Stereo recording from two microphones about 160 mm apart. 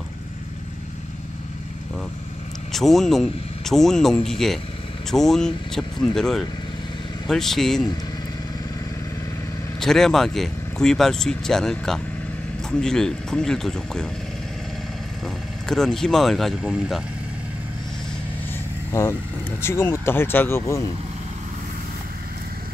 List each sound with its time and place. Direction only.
2.7 s speech: centre (ahead or behind)
9.8 s speech: centre (ahead or behind)
15.7 s speech: 5° left (ahead or behind)
18.9 s speech: 20° left (ahead or behind)